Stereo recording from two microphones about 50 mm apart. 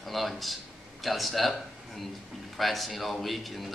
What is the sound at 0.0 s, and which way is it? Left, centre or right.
A man's voice, centre.